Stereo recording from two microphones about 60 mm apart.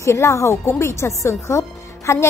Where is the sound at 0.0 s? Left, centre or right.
Left.